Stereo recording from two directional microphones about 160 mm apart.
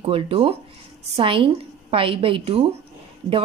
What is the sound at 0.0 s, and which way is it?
A woman's voice, 35° right (ahead or behind).